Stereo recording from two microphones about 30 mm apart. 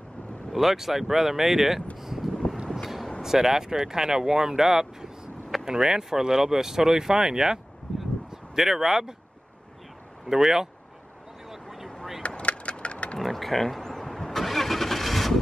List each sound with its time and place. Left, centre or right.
0.5 s speech: centre
2.0 s wind: centre
3.2 s speech: centre
10.3 s speech: centre
12.2 s a sound: left
13.2 s a sound: centre
14.1 s vehicle: centre